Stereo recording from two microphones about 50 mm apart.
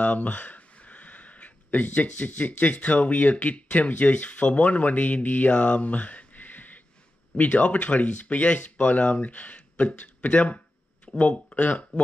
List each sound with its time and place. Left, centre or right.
0.0 s speech: left